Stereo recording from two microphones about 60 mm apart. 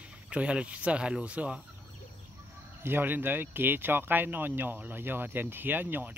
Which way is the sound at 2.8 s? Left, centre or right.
Right.